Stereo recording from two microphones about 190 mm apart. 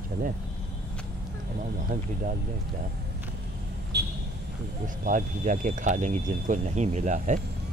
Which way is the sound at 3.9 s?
60° right (ahead or behind).